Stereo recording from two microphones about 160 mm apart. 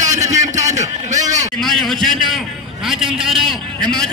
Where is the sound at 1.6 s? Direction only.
Centre (ahead or behind).